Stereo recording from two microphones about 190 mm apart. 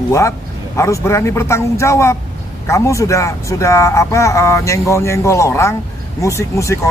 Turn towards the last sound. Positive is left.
turn(degrees=15)  # may be behind; listen again after turning